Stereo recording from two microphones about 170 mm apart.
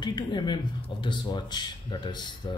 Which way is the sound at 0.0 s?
25° left (ahead or behind).